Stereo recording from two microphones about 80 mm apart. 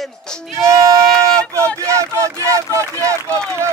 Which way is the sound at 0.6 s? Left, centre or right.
Right.